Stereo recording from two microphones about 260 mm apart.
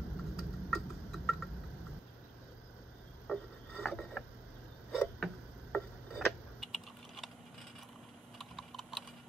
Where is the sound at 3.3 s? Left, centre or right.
Centre.